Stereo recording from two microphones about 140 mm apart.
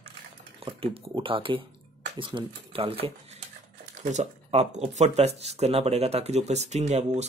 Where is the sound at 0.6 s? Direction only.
40° right (ahead or behind).